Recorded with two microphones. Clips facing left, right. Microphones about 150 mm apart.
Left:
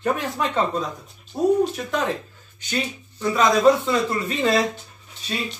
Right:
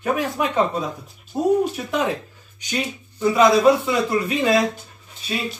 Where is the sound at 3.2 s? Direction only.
10° right (ahead or behind).